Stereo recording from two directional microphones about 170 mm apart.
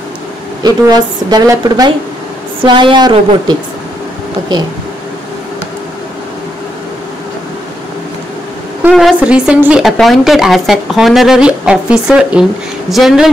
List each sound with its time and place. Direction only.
0.6 s a woman's voice: 25° right (ahead or behind)
8.9 s a woman's voice: 5° right (ahead or behind)